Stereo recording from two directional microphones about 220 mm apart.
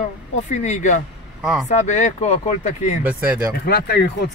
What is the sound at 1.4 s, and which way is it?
Speech, centre (ahead or behind).